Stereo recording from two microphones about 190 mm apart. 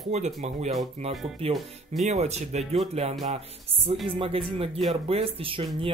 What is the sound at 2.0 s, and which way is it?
Speech, 35° right (ahead or behind).